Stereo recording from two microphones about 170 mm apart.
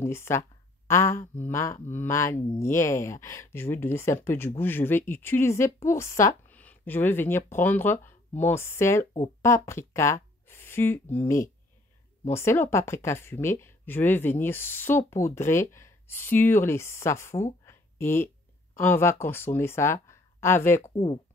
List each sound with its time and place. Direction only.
0.0 s speech: 15° left (ahead or behind)
20.9 s speech: 30° left (ahead or behind)